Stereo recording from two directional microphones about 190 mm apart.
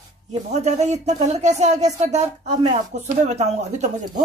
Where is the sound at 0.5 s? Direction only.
35° right (ahead or behind).